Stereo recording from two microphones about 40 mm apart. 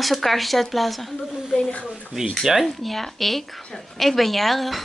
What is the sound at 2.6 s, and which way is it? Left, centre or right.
A woman's voice, centre.